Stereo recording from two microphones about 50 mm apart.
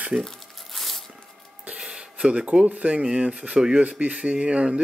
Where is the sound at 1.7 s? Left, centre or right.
Centre.